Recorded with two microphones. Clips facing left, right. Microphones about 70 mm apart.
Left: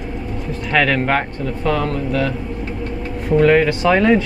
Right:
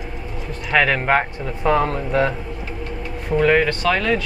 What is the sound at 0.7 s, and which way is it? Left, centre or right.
Speech, centre.